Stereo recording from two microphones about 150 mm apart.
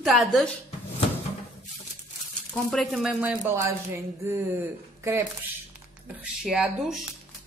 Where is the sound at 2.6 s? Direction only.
Centre (ahead or behind); by 4.0 s 15° right (ahead or behind).